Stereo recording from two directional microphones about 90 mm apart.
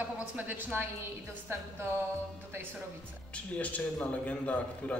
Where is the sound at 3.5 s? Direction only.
15° left (ahead or behind).